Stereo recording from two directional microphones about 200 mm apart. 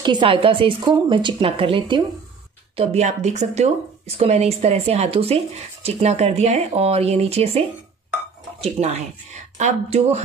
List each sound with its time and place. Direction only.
0.0 s a woman's voice: 25° right (ahead or behind)